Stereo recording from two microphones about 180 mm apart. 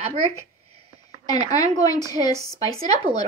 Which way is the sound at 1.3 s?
20° left (ahead or behind).